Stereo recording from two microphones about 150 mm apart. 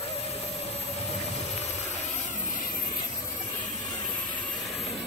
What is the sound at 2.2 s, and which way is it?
Vehicle, 55° left (ahead or behind).